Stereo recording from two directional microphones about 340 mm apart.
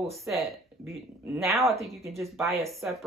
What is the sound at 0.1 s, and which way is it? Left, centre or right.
Speech, centre.